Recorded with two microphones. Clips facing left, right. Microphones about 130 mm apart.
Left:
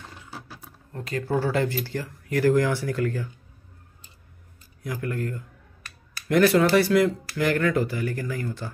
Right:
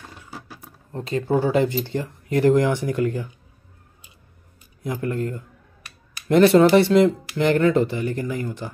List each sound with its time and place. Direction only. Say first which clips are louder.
0.1 s roaring cats: right 2 dB; 15° right (ahead or behind)
0.9 s speech: right 5 dB; 25° right (ahead or behind)
4.8 s speech: right 4 dB; 25° right (ahead or behind)